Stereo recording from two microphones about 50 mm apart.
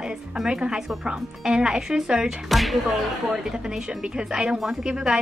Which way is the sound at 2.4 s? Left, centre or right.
Centre.